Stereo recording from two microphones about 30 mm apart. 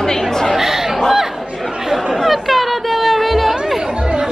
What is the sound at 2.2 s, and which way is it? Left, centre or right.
Chatter, centre.